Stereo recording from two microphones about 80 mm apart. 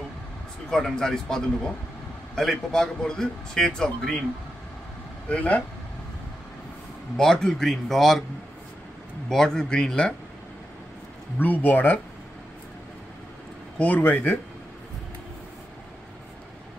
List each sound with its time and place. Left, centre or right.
0.7 s a man's voice: centre
5.3 s speech: centre
7.2 s speech: centre
9.3 s a man's voice: centre
11.3 s speech: left
13.7 s speech: centre